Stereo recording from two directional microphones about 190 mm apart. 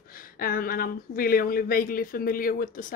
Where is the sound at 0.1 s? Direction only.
50° left (ahead or behind).